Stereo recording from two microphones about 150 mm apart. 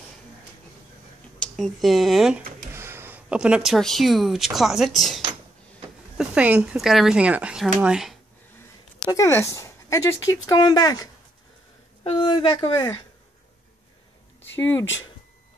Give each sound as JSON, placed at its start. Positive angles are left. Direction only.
{"t": 1.4, "sound": "speech", "side_deg": 0}
{"t": 2.7, "sound": "speech", "side_deg": -15}
{"t": 9.0, "sound": "speech", "side_deg": 20}
{"t": 12.0, "sound": "speech", "side_deg": 35}